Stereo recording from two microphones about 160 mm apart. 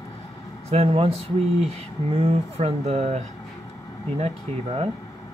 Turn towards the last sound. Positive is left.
turn(degrees=-40)  # may be behind; listen again after turning